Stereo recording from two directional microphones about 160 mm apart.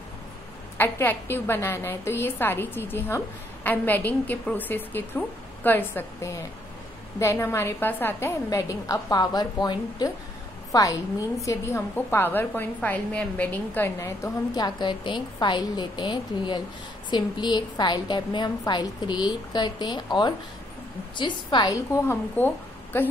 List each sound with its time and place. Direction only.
0.7 s a woman's voice: 15° left (ahead or behind)